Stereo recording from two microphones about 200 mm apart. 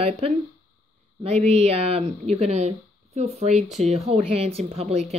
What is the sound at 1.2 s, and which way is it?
Speech, 30° right (ahead or behind).